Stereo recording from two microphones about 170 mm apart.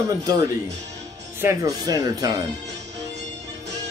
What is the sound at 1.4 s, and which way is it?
Music, 15° right (ahead or behind).